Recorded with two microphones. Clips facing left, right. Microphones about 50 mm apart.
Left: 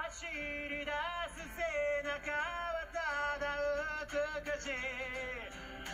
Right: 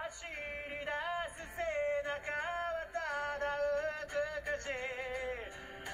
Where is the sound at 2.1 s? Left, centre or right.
Left.